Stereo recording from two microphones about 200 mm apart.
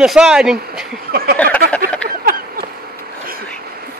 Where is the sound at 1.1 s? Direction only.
50° right (ahead or behind).